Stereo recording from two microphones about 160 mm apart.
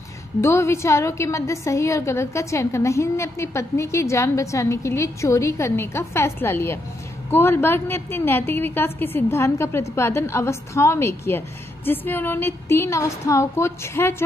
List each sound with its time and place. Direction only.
0.4 s a woman's voice: 15° left (ahead or behind)